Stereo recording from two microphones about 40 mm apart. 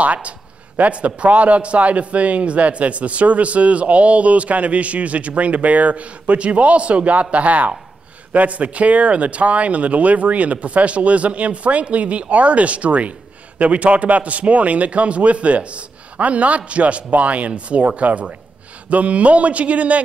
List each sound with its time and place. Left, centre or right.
0.0 s a man's voice: right